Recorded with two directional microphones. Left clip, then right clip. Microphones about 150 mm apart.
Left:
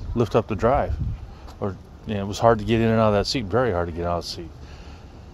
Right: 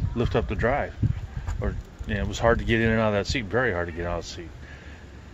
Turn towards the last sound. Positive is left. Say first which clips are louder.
# left 4 dB
turn(degrees=40)  # may be behind; listen again after turning